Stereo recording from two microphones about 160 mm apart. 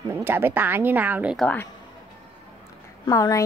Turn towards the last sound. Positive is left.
turn(degrees=20)  # may be behind; listen again after turning